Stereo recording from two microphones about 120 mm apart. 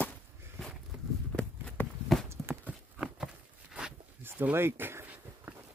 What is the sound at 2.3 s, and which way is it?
Horse, 20° right (ahead or behind).